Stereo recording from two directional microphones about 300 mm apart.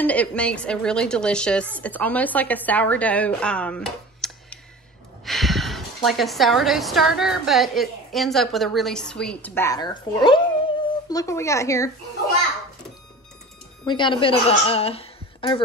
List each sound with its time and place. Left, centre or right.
0.0 s a woman's voice: centre
13.8 s speech: centre